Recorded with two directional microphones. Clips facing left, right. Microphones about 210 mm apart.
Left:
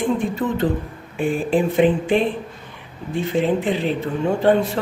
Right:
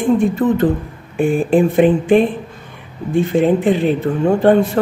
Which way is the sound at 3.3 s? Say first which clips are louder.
Right 5 dB; 50° right (ahead or behind).